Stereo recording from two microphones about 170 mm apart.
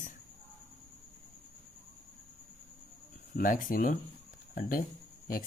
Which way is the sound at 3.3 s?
50° left (ahead or behind).